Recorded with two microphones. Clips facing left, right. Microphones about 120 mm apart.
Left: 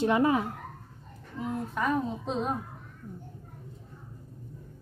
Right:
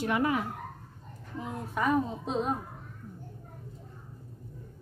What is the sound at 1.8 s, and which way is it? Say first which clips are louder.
Speech: right 2 dB; 5° right (ahead or behind).